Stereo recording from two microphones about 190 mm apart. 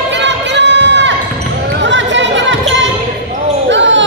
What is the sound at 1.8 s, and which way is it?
Chatter, 75° right (ahead or behind).